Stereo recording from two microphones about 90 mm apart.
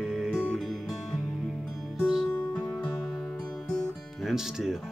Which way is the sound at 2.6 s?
25° left (ahead or behind).